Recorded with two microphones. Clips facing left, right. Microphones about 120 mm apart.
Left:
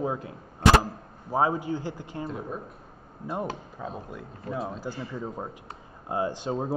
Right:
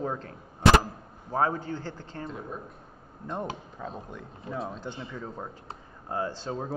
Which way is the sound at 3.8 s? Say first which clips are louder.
Left 2 dB; 5° left (ahead or behind).